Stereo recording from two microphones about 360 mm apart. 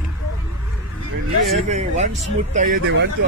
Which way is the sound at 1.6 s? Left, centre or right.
Centre.